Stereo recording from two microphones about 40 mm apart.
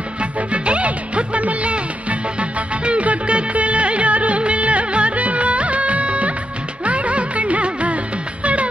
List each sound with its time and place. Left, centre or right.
0.2 s music: right
2.8 s music of bollywood: right
6.8 s music: right